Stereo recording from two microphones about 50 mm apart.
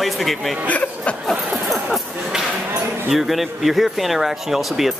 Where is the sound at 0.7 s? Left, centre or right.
Left.